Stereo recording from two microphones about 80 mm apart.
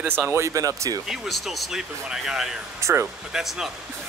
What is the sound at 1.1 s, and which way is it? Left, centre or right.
Speech, centre.